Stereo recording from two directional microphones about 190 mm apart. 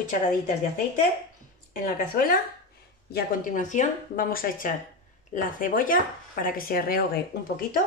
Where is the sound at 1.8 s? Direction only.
45° left (ahead or behind).